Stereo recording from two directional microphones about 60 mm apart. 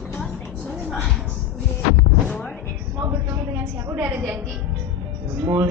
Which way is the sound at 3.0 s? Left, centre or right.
Right.